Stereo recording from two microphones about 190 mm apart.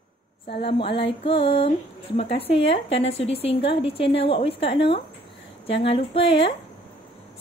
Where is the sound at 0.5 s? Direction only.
30° left (ahead or behind).